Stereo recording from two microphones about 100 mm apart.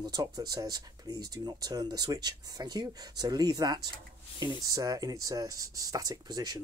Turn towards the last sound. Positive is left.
turn(degrees=-40)  # may be behind; listen again after turning